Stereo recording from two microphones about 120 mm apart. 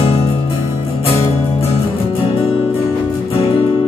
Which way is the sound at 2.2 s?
45° left (ahead or behind).